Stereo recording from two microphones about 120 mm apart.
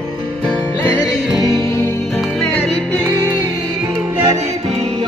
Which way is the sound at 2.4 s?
10° left (ahead or behind).